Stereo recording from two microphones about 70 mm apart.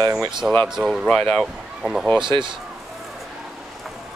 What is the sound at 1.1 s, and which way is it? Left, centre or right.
Speech, centre.